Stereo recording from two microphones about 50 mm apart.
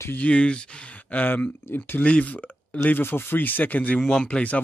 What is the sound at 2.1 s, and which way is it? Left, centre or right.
Speech, left.